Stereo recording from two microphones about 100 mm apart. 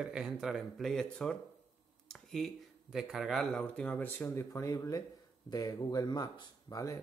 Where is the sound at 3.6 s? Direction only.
15° left (ahead or behind).